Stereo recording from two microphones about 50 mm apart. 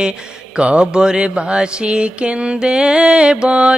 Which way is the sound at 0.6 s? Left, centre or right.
Right.